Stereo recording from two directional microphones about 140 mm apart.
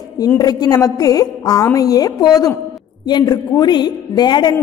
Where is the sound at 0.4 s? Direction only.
25° left (ahead or behind).